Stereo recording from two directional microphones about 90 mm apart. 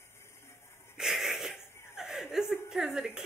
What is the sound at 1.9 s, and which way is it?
Chuckle, 5° right (ahead or behind).